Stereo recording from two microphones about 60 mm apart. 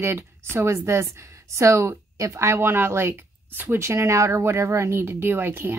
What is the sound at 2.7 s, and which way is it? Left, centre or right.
Speech, right.